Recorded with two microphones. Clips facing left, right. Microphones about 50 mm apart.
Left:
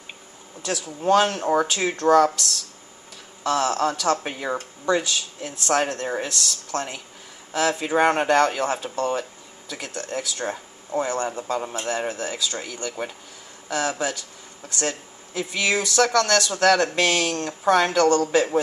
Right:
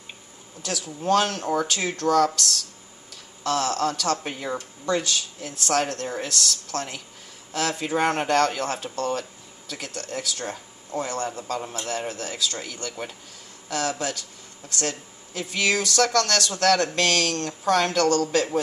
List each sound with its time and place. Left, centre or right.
0.6 s speech: left
3.4 s speech: centre